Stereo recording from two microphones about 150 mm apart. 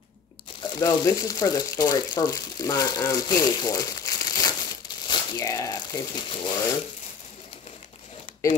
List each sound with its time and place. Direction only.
0.6 s speech: 25° left (ahead or behind)